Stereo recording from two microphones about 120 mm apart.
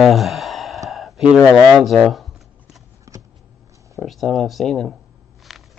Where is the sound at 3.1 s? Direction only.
25° right (ahead or behind).